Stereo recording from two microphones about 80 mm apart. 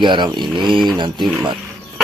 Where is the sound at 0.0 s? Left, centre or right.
Right.